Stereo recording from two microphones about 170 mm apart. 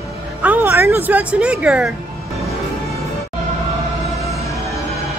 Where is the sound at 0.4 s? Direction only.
10° right (ahead or behind).